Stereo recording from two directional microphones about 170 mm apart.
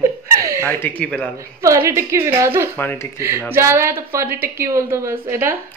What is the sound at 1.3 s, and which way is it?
A woman's voice, 20° right (ahead or behind).